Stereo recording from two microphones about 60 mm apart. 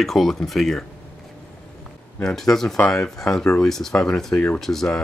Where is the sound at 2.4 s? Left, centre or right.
Centre.